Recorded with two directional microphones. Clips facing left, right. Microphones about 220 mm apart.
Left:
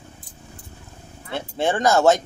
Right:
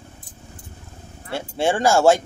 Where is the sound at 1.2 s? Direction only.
10° right (ahead or behind).